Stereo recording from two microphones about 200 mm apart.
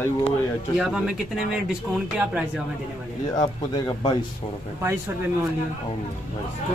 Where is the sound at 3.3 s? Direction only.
20° left (ahead or behind).